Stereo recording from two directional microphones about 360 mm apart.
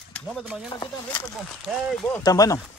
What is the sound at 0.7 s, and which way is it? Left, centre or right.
Speech, centre.